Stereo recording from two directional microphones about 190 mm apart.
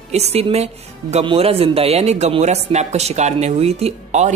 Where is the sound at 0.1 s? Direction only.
35° right (ahead or behind).